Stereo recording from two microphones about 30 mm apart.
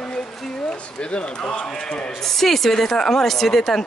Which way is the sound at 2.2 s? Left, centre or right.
Centre.